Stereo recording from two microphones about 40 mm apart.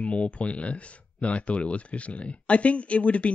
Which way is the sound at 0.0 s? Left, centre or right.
Left.